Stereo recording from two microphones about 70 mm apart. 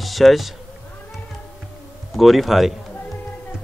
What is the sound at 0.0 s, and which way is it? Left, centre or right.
Speech, centre.